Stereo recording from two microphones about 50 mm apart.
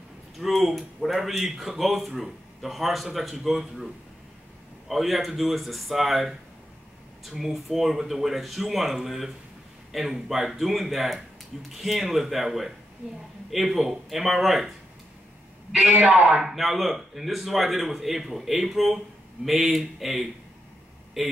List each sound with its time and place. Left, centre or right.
0.4 s speech: centre
15.9 s a man's voice: right
16.4 s speech: centre